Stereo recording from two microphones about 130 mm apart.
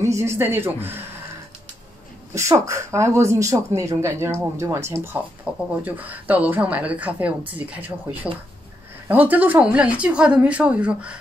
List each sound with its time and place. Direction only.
0.0 s speech: 20° right (ahead or behind)
2.3 s speech: 20° right (ahead or behind)